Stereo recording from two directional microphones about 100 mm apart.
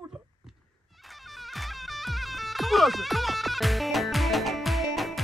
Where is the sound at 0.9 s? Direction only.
Centre (ahead or behind).